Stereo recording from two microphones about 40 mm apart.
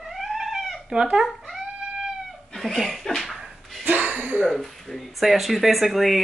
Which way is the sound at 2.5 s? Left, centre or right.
Centre.